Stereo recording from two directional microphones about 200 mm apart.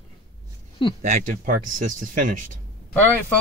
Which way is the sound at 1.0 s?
40° right (ahead or behind).